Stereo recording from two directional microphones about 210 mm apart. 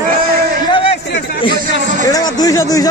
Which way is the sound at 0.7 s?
25° left (ahead or behind).